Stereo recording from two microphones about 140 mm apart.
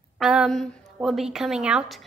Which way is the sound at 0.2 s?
5° right (ahead or behind).